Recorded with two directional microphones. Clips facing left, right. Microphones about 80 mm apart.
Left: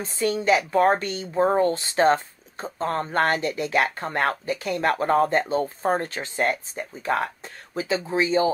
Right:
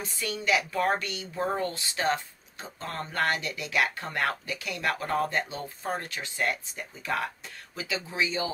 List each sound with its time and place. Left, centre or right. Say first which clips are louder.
0.0 s a woman's voice: left 8 dB; left